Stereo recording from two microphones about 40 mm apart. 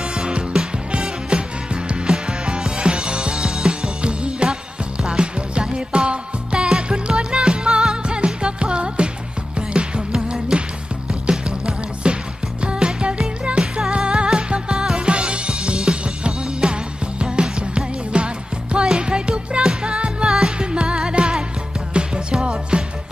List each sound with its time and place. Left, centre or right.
0.0 s music: centre
4.0 s music: right